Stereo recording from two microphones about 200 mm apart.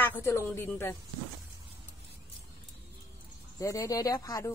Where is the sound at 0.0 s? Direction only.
10° left (ahead or behind).